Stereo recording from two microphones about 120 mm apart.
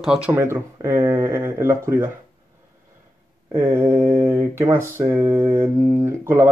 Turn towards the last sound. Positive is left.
turn(degrees=-20)  # may be behind; listen again after turning